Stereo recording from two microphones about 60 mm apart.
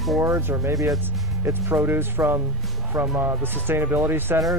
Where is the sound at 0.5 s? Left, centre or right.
Right.